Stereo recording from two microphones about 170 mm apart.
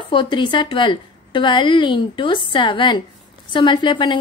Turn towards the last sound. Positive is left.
turn(degrees=25)  # may be behind; listen again after turning